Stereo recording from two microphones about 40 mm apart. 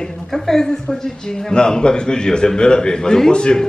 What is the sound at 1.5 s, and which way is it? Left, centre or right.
A man's voice, left.